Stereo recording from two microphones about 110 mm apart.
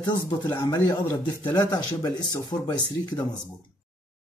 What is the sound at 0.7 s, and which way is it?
Speech, 30° left (ahead or behind).